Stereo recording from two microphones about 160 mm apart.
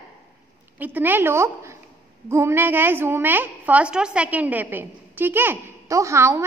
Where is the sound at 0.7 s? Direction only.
10° right (ahead or behind).